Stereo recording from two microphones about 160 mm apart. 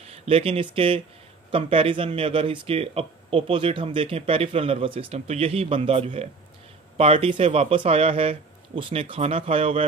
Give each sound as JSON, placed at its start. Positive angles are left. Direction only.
{"t": 0.0, "sound": "speech", "side_deg": -40}